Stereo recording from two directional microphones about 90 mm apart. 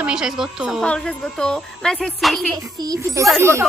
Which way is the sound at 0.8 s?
10° left (ahead or behind).